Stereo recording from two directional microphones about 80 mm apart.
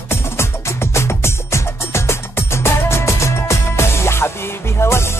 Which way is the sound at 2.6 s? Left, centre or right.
Left.